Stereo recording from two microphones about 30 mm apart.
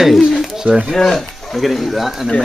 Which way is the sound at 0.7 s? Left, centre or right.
Right.